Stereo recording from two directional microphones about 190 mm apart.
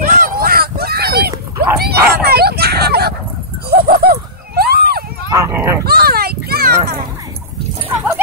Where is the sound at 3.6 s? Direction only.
55° right (ahead or behind).